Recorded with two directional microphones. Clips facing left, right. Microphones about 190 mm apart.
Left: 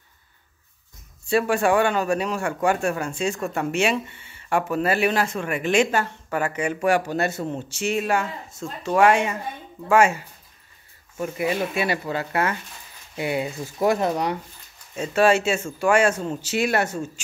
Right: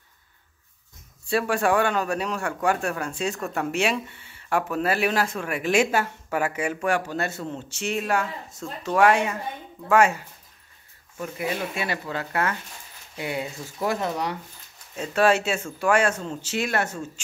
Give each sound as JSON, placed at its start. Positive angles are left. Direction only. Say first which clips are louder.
{"t": 1.3, "sound": "speech", "louder": "left 3 dB", "side_deg": 5}
{"t": 6.8, "sound": "speech", "louder": "left 5 dB", "side_deg": 10}
{"t": 11.3, "sound": "speech", "louder": "left 4 dB", "side_deg": 10}
{"t": 13.8, "sound": "speech", "louder": "left 5 dB", "side_deg": 20}
{"t": 15.0, "sound": "speech", "louder": "left 2 dB", "side_deg": 0}